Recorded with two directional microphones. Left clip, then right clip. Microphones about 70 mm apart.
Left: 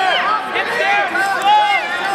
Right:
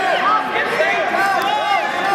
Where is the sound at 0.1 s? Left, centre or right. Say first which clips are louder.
Even; left.